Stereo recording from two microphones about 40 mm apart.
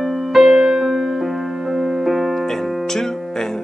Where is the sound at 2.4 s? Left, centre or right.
Centre.